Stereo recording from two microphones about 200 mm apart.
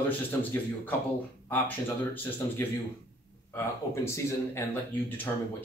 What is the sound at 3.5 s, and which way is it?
Speech, 15° left (ahead or behind).